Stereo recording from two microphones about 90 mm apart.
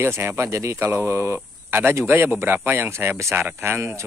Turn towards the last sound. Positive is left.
turn(degrees=-25)  # may be behind; listen again after turning